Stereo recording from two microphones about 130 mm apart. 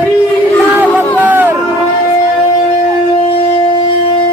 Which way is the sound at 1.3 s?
15° right (ahead or behind).